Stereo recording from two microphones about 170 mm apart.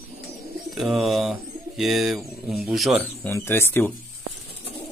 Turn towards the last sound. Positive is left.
turn(degrees=10)  # may be behind; listen again after turning